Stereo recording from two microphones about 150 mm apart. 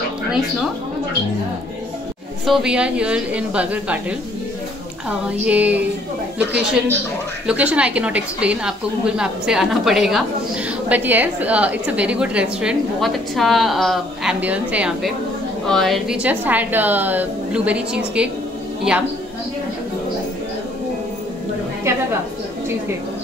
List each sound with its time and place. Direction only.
2.4 s a woman's voice: 5° right (ahead or behind)
5.5 s a woman's voice: 10° right (ahead or behind)
7.4 s a woman's voice: 10° right (ahead or behind)
21.9 s a sound: 20° right (ahead or behind)